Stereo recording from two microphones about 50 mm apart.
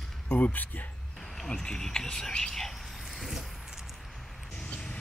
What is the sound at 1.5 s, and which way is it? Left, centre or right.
Speech, centre.